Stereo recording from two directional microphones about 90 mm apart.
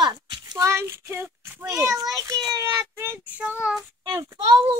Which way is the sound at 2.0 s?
40° right (ahead or behind).